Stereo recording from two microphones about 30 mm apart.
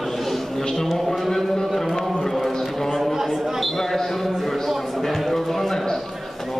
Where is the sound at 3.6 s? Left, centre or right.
Centre.